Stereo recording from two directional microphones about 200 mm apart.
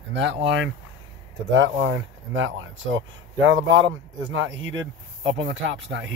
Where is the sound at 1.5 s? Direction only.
70° right (ahead or behind).